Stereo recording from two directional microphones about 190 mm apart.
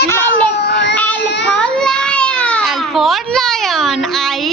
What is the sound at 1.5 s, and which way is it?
Baby cry, 5° left (ahead or behind).